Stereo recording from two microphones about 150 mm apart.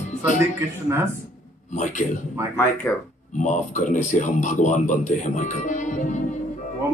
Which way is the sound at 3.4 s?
55° left (ahead or behind).